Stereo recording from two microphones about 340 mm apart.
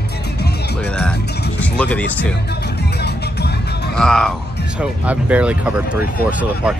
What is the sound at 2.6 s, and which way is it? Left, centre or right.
Music, left.